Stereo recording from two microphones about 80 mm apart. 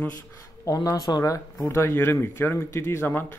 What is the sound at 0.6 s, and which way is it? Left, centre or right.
Speech, left.